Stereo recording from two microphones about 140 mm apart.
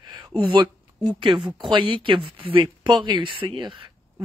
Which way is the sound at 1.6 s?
35° right (ahead or behind).